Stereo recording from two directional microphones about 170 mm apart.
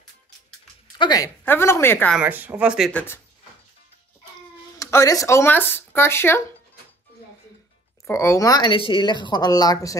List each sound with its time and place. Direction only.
0.9 s speech: 25° left (ahead or behind)
2.1 s speech: 10° right (ahead or behind)
2.9 s speech: 10° left (ahead or behind)
4.7 s speech: 20° left (ahead or behind)
8.1 s a woman's voice: 15° left (ahead or behind)